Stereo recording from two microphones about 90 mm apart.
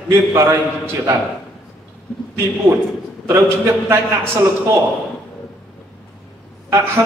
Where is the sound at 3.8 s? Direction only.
25° right (ahead or behind).